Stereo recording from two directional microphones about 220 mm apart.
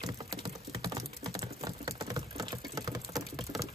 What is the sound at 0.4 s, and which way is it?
Typing, 20° right (ahead or behind).